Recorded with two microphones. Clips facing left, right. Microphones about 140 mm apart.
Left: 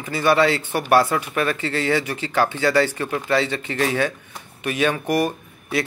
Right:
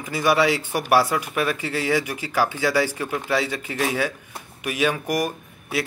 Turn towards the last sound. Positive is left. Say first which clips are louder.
# left 2 dB
turn(degrees=-10)  # may be behind; listen again after turning